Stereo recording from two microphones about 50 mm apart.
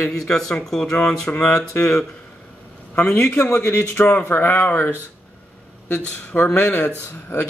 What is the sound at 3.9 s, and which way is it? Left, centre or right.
Speech, left.